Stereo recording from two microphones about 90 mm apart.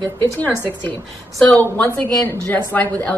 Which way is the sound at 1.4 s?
15° left (ahead or behind).